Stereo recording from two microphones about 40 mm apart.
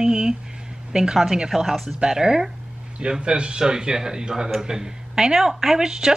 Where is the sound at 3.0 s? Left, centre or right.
Right.